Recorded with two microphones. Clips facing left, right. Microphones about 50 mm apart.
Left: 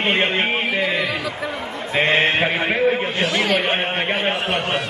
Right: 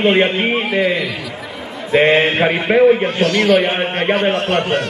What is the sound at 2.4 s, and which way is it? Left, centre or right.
Speech, centre.